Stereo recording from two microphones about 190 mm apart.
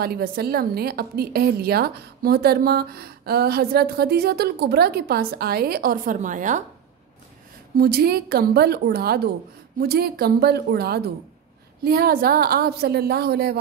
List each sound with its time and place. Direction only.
0.0 s a woman's voice: 55° right (ahead or behind)
7.8 s a woman's voice: 55° right (ahead or behind)